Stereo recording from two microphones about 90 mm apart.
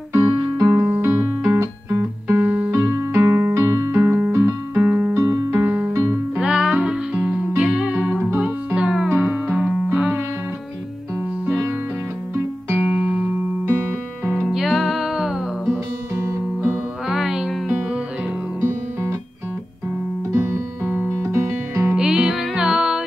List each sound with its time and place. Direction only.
0.1 s music: 40° right (ahead or behind)
0.8 s music: 25° right (ahead or behind)
2.7 s music: 30° right (ahead or behind)
4.7 s music: 20° right (ahead or behind)
5.1 s music: 35° right (ahead or behind)
5.6 s music: 20° right (ahead or behind)
12.6 s music: 20° right (ahead or behind)
12.9 s music: 10° right (ahead or behind)
14.5 s music: 5° right (ahead or behind)
16.2 s music: 35° right (ahead or behind)
17.1 s music: 5° right (ahead or behind)
18.6 s music: 25° right (ahead or behind)
20.3 s music: 25° right (ahead or behind)
21.9 s music: 10° right (ahead or behind)